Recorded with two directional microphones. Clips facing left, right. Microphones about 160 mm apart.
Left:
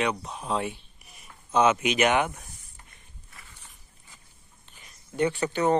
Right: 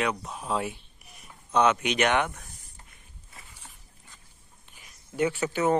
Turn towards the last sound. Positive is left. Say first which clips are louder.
# left 1 dB
turn(degrees=-5)  # may be behind; listen again after turning